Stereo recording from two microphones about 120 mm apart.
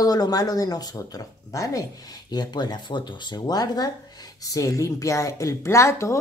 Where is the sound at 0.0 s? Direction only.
35° left (ahead or behind).